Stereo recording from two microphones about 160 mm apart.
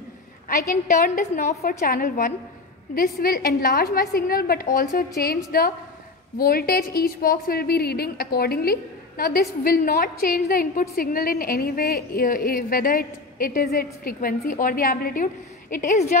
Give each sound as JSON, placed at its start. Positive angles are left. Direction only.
{"t": 0.5, "sound": "a woman's voice", "side_deg": 55}
{"t": 1.6, "sound": "a woman's voice", "side_deg": 65}
{"t": 15.7, "sound": "a woman's voice", "side_deg": 55}